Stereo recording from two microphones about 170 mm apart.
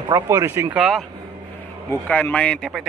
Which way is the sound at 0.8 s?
Centre (ahead or behind).